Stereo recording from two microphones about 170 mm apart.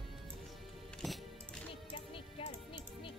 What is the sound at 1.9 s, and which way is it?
Music, 30° left (ahead or behind).